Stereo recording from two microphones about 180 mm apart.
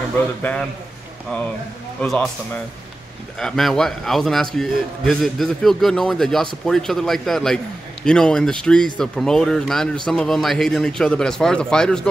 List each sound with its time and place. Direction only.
0.4 s a man's voice: 10° left (ahead or behind)
2.0 s a man's voice: 5° left (ahead or behind)